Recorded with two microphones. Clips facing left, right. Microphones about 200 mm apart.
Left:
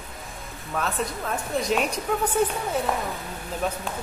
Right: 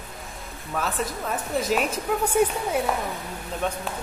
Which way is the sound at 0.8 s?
Centre (ahead or behind).